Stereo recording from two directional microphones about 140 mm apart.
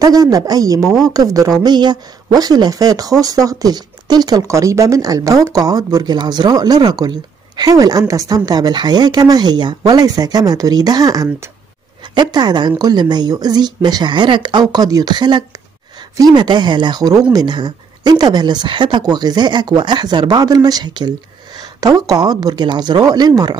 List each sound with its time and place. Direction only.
0.0 s speech: 25° right (ahead or behind)